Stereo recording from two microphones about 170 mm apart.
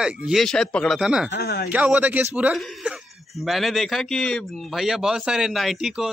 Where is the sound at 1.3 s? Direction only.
70° left (ahead or behind).